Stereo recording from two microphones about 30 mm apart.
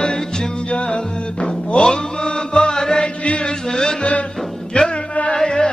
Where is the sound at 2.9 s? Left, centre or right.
Left.